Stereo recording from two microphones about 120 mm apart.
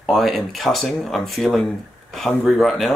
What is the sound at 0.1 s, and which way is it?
Speech, centre (ahead or behind).